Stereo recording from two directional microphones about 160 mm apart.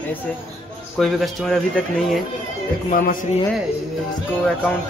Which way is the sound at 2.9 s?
55° left (ahead or behind).